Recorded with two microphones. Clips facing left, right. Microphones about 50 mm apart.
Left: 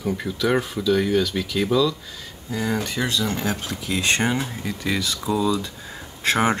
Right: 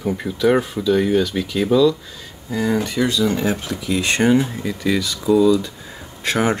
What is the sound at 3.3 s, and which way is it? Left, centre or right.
Speech, centre.